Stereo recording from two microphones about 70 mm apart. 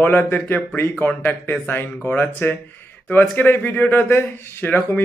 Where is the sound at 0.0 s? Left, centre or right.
Left.